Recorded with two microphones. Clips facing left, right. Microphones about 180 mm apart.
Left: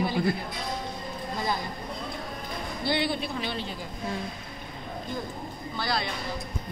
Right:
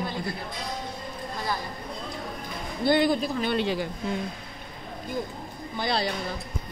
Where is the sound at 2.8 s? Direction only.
45° right (ahead or behind).